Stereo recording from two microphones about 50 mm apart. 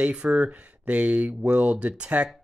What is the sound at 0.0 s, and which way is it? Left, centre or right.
Speech, right.